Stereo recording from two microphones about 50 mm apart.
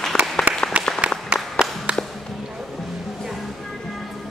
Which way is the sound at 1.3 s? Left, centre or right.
Right.